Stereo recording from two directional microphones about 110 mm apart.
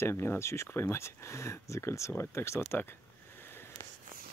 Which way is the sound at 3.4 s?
20° left (ahead or behind).